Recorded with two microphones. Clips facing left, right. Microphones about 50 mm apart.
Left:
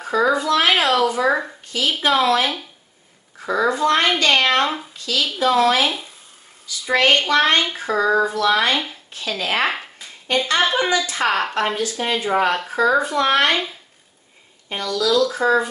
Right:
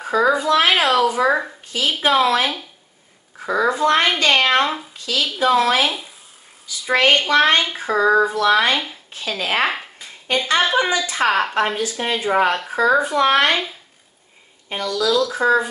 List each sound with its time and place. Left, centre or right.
0.0 s speech: centre
1.0 s speech: centre
4.6 s a woman's voice: centre
4.9 s a woman's voice: right
5.9 s speech: centre
6.9 s speech: centre
9.7 s a sound: centre
10.6 s a woman's voice: centre
13.5 s a woman's voice: centre
14.8 s speech: centre